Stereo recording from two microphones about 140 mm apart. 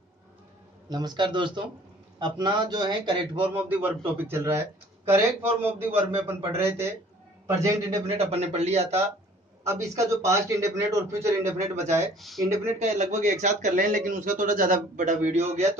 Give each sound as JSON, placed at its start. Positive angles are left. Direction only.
{"t": 0.8, "sound": "speech", "side_deg": -30}
{"t": 3.5, "sound": "a man's voice", "side_deg": -15}
{"t": 8.1, "sound": "speech", "side_deg": -45}
{"t": 9.7, "sound": "a man's voice", "side_deg": -20}
{"t": 12.2, "sound": "speech", "side_deg": 0}
{"t": 12.4, "sound": "a man's voice", "side_deg": -20}
{"t": 12.7, "sound": "speech", "side_deg": -55}